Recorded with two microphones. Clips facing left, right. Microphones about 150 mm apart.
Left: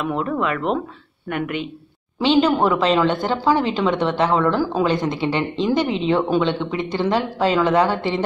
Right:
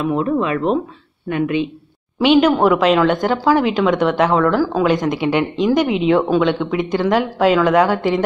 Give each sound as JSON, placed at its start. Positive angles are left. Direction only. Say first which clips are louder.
{"t": 0.1, "sound": "speech", "louder": "right 4 dB", "side_deg": -20}
{"t": 2.1, "sound": "speech", "louder": "right 4 dB", "side_deg": -10}